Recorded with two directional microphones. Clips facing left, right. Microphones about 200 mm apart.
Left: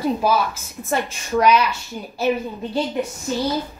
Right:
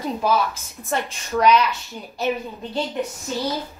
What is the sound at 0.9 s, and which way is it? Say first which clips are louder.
A woman's voice: left 3 dB; 5° left (ahead or behind).